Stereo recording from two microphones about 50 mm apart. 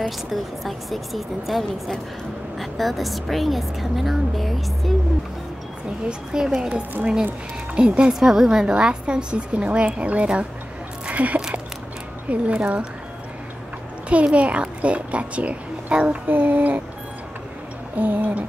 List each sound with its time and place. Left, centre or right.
0.3 s a woman's voice: centre
6.0 s a woman's voice: centre
8.1 s a woman's voice: centre; by 10.4 s right
11.1 s a sound: right
12.3 s a woman's voice: right
14.0 s a woman's voice: right
16.3 s speech: right
17.9 s speech: right